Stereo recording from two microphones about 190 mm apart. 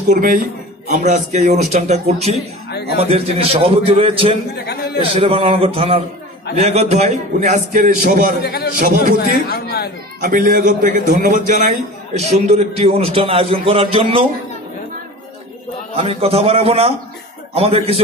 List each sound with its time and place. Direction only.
0.1 s a man's voice: 45° right (ahead or behind)
2.7 s a sound: 60° left (ahead or behind)
3.0 s a man's voice: 30° right (ahead or behind)
4.6 s a man's voice: 60° left (ahead or behind)
5.1 s a man's voice: 30° right (ahead or behind)
8.4 s a man's voice: 55° left (ahead or behind)
10.2 s a man's voice: 50° right (ahead or behind); by 14.2 s 30° right (ahead or behind)
16.0 s a man's voice: 30° right (ahead or behind)